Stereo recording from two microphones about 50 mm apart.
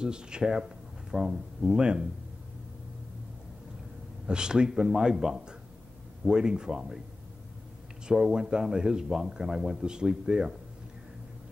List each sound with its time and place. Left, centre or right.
0.0 s speech: centre
4.3 s speech: centre
8.1 s speech: centre